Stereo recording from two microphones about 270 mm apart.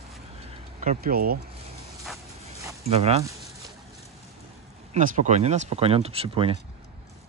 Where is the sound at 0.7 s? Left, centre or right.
Right.